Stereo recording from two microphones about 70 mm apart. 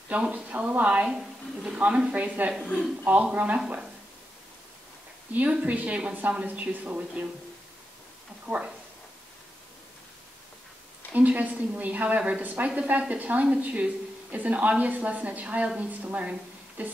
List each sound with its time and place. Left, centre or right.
0.1 s a woman's voice: right
1.0 s a woman's voice: centre
5.3 s a woman's voice: centre
8.5 s a woman's voice: centre
11.1 s a woman's voice: right